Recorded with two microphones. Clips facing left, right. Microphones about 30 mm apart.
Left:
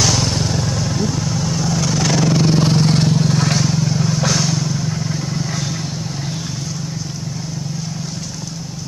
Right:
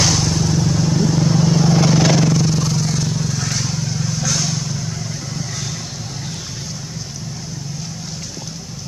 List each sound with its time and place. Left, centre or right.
0.2 s vehicle: left
0.5 s vehicle: centre
0.9 s vehicle: centre
2.3 s vehicle: left
3.1 s vehicle: left
3.5 s vehicle: centre